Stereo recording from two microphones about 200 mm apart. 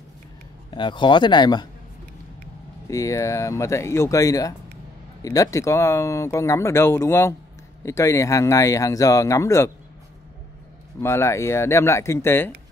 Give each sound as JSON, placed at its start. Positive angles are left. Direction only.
{"t": 0.7, "sound": "speech", "side_deg": 25}
{"t": 2.9, "sound": "speech", "side_deg": 15}
{"t": 11.0, "sound": "speech", "side_deg": 15}